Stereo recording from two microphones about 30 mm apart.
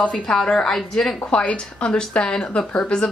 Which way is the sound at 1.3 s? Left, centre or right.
Left.